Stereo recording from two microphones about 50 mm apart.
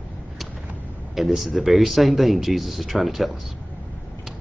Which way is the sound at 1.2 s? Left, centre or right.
Centre.